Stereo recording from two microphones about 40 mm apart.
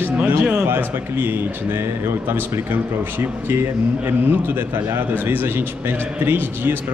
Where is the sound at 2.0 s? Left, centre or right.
Right.